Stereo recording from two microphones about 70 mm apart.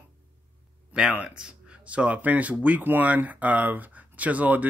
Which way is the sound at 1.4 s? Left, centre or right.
Centre.